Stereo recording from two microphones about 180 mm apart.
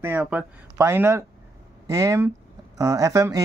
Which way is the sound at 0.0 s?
10° right (ahead or behind).